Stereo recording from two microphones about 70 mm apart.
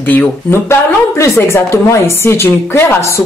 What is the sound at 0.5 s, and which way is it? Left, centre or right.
Speech, left.